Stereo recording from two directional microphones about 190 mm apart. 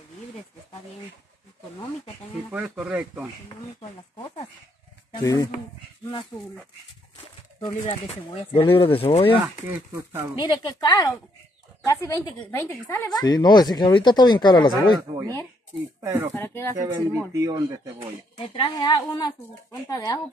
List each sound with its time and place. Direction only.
2.5 s speech: 5° right (ahead or behind)
5.1 s insect: 20° left (ahead or behind)
6.3 s speech: 15° left (ahead or behind)
7.8 s speech: 30° left (ahead or behind)
9.3 s speech: 10° right (ahead or behind)
10.4 s speech: 20° left (ahead or behind)
14.7 s speech: 20° right (ahead or behind)
16.3 s speech: 10° left (ahead or behind)
16.7 s speech: 10° right (ahead or behind)
18.6 s speech: 25° left (ahead or behind)